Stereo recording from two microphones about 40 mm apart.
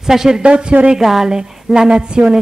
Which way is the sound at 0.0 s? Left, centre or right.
Centre.